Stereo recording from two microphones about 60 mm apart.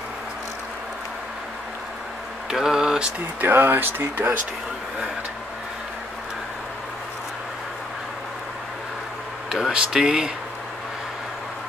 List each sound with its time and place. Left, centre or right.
2.5 s a sound: centre
3.3 s speech: right
9.5 s speech: centre